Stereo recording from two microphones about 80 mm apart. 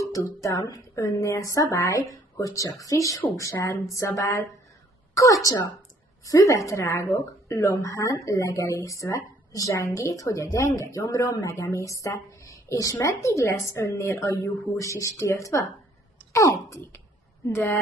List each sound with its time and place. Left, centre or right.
0.4 s a woman's voice: left
17.5 s speech: left